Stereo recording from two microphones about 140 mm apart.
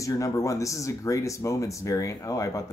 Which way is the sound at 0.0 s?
25° left (ahead or behind).